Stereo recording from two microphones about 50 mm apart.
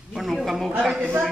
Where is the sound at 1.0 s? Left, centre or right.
Right.